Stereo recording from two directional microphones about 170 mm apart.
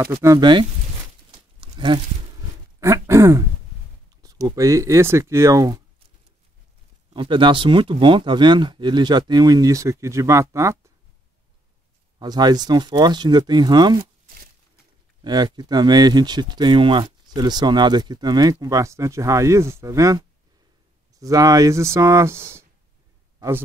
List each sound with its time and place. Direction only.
0.0 s speech: 15° right (ahead or behind)
1.3 s tearing: 30° right (ahead or behind)
2.8 s speech: 15° right (ahead or behind)
7.2 s speech: 30° right (ahead or behind)
12.2 s speech: 25° right (ahead or behind)
14.2 s a sound: 60° right (ahead or behind)
15.2 s speech: 25° right (ahead or behind)